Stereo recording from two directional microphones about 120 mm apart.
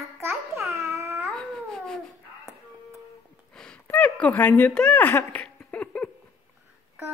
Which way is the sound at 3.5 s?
5° left (ahead or behind).